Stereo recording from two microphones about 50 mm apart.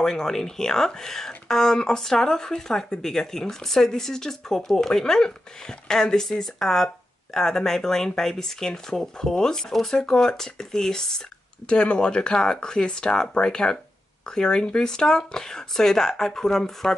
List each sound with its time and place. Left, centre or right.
0.0 s speech: centre